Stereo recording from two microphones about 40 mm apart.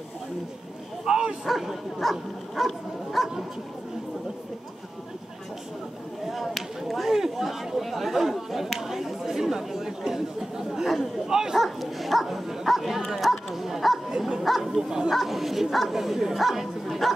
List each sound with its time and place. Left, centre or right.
1.0 s dog: right
1.4 s dog: centre
6.3 s a sound: centre
7.1 s chatter: centre
11.5 s bow-wow: centre
13.3 s dog: centre
13.7 s bow-wow: centre
14.8 s bow-wow: centre
15.0 s bow-wow: centre